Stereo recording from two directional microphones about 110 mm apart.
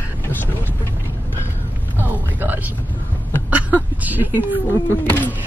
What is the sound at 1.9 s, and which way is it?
Speech, 15° right (ahead or behind).